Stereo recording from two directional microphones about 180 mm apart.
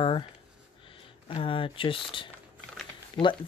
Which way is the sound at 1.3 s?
30° left (ahead or behind).